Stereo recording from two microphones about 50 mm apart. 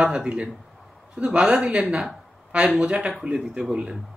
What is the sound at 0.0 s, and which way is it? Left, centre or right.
Speech, centre.